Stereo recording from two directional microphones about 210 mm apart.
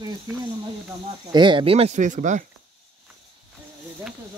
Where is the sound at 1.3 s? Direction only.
20° right (ahead or behind).